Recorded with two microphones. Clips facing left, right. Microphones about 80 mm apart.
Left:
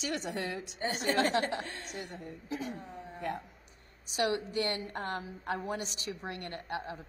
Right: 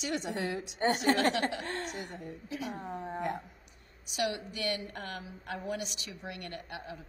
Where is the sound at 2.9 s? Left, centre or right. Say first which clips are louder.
Right 7 dB; right.